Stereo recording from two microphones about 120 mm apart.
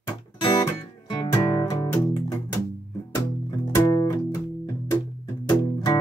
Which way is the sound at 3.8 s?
35° left (ahead or behind).